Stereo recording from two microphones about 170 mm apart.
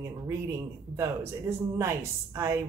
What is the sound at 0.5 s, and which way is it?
Speech, 15° right (ahead or behind).